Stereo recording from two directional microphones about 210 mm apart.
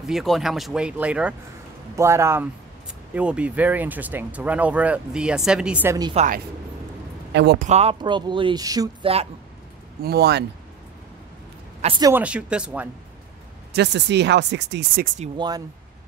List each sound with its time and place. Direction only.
0.0 s speech: centre (ahead or behind)
6.1 s speech: 35° right (ahead or behind)
7.3 s speech: 55° right (ahead or behind)
7.6 s speech: 30° right (ahead or behind)
10.0 s speech: 50° right (ahead or behind)
12.0 s speech: 10° right (ahead or behind)
13.7 s speech: 55° right (ahead or behind)
15.3 s speech: 20° right (ahead or behind)